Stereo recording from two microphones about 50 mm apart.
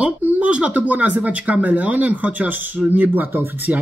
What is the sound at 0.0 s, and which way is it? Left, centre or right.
Speech, right.